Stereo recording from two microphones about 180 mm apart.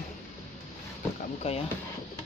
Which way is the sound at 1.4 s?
35° left (ahead or behind).